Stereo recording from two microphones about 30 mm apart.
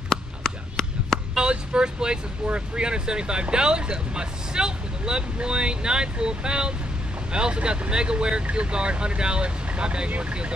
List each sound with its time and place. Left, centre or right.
0.1 s a sound: centre
1.5 s vehicle: right
2.4 s speech: right